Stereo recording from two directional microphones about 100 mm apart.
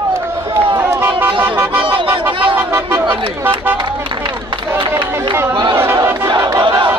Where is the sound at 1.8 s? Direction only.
60° right (ahead or behind).